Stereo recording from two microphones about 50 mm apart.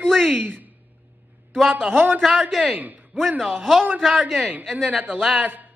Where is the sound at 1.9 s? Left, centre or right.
Right.